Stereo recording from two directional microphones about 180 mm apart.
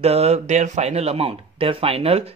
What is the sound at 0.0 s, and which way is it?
Speech, 35° right (ahead or behind).